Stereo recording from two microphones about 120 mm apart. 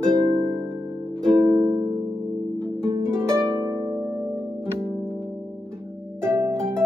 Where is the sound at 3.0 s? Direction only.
25° right (ahead or behind).